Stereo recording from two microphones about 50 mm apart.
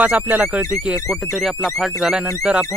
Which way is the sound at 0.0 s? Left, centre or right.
Right.